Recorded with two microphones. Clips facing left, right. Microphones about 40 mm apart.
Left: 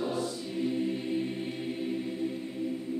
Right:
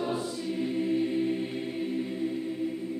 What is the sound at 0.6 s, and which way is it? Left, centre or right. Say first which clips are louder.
Choir: right 3 dB; centre.